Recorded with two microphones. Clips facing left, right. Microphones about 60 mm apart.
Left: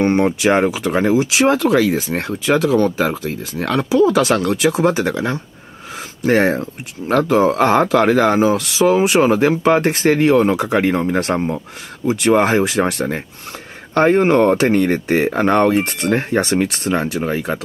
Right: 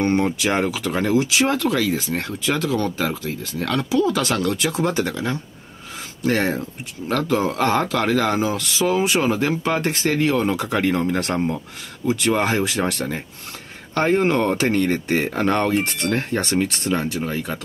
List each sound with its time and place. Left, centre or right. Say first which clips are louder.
0.0 s speech: left 5 dB; centre
16.9 s speech: left 5 dB; left